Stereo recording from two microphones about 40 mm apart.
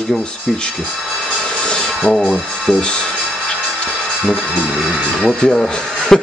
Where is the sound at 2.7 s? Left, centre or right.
Right.